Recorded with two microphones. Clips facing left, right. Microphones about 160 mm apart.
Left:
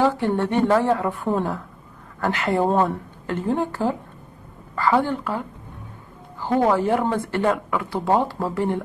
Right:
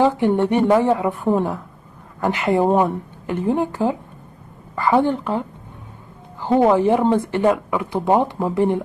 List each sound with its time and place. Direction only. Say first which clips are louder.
0.0 s a woman's voice: right 4 dB; 20° right (ahead or behind)